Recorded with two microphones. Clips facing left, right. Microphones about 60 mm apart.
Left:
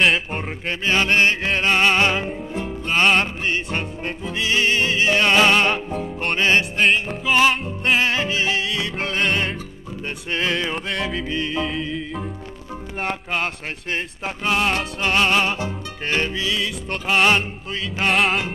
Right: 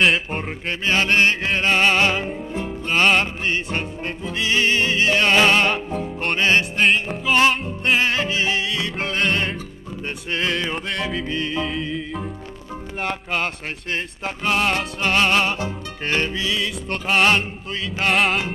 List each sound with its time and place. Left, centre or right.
0.0 s music: centre
0.7 s music: centre
1.4 s music: centre
2.0 s music: left
2.2 s music: centre
4.5 s speech: centre
4.9 s music: centre
5.2 s music: centre
8.1 s music: centre
8.7 s music: centre
13.0 s speech: centre
14.2 s music: centre